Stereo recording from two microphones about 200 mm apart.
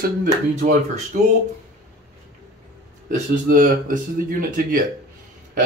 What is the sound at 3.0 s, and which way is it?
Speech, 45° right (ahead or behind).